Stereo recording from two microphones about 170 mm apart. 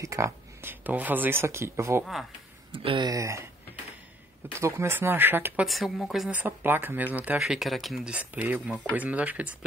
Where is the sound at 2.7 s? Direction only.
30° right (ahead or behind); by 5.7 s 10° right (ahead or behind).